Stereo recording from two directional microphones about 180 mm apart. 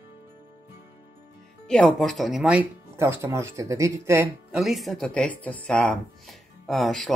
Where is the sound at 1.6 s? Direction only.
5° left (ahead or behind); by 4.3 s 15° right (ahead or behind).